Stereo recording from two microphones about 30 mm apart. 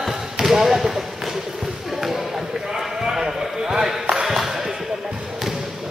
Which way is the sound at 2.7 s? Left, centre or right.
Centre.